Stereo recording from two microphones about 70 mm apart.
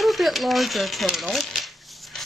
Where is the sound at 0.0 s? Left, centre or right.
Centre.